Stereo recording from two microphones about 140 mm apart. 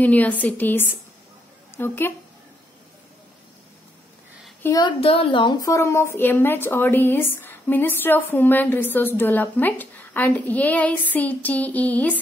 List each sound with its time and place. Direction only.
0.0 s a woman's voice: 10° left (ahead or behind)
4.6 s a child's voice: 30° left (ahead or behind)
5.0 s a woman's voice: 40° left (ahead or behind); by 12.2 s 10° left (ahead or behind)